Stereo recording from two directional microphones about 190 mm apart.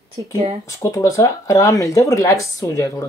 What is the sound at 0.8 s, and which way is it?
Speech, 15° left (ahead or behind).